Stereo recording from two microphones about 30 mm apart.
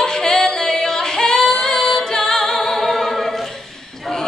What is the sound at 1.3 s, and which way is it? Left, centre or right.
A capella, left.